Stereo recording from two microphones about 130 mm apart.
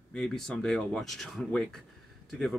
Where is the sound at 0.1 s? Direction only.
5° left (ahead or behind).